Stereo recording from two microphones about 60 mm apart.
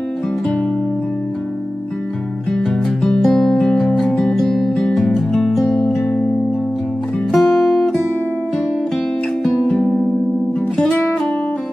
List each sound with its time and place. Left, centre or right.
2.5 s music: centre
3.3 s music: centre
7.3 s music: centre
9.5 s music: centre